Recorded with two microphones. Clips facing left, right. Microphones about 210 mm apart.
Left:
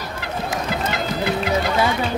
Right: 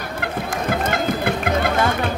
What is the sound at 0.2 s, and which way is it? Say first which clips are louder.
Music: right 1 dB; 50° right (ahead or behind).